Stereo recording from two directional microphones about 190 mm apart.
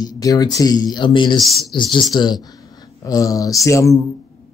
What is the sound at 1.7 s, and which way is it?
Speech, 25° left (ahead or behind).